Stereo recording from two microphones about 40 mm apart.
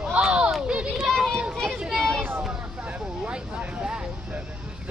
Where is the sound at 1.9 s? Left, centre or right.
Centre.